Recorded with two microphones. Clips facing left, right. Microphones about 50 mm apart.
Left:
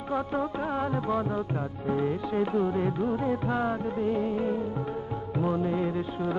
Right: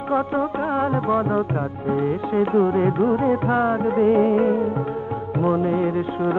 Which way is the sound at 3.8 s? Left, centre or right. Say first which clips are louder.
Right 11 dB; right.